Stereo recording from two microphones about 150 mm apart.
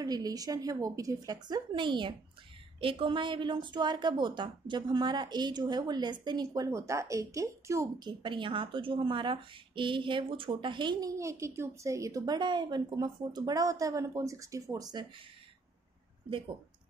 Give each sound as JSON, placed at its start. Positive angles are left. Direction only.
{"t": 0.0, "sound": "a woman's voice", "side_deg": -25}